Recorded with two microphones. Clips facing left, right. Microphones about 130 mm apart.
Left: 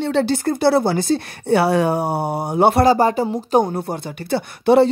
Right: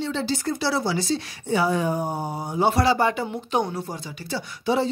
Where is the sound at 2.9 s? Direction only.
40° left (ahead or behind).